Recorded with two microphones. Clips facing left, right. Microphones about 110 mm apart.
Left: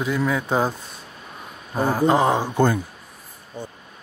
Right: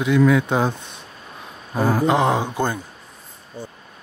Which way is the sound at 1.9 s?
5° left (ahead or behind).